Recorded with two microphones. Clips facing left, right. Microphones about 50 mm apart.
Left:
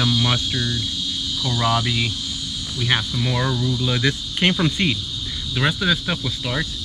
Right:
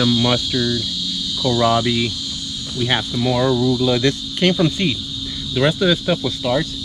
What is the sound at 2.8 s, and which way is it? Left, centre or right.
Speech, centre.